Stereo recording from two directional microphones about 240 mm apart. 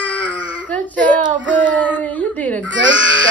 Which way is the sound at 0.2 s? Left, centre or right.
Centre.